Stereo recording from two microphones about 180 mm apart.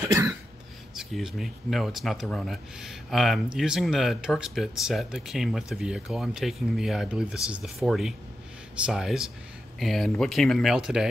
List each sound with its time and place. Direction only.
0.0 s cough: 15° right (ahead or behind)
0.9 s speech: centre (ahead or behind)